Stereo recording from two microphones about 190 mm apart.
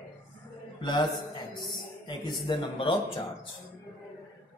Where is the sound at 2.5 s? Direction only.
30° left (ahead or behind).